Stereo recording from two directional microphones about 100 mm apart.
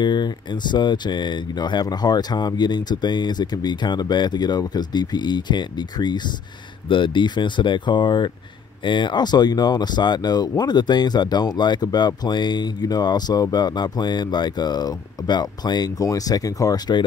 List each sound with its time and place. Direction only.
0.0 s speech: 50° left (ahead or behind)